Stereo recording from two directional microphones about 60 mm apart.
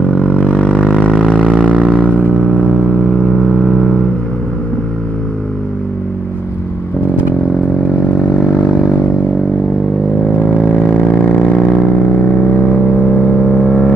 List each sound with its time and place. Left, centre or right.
0.1 s a sound: left
1.6 s vehicle: centre
3.5 s vehicle: centre
10.3 s vehicle: left